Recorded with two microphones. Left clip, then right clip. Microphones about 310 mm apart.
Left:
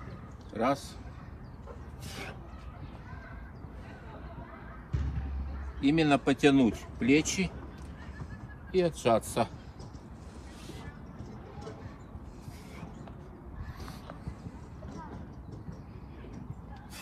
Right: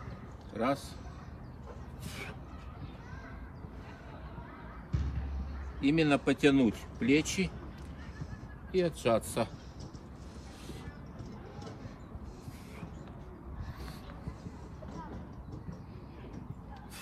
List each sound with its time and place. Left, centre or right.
0.5 s a man's voice: centre
2.0 s a sound: centre
5.8 s speech: centre
8.7 s speech: centre